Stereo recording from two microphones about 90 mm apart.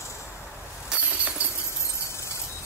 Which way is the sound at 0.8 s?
15° right (ahead or behind).